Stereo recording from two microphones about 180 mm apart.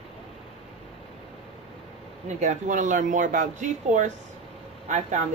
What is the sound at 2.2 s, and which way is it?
Speech, 40° right (ahead or behind).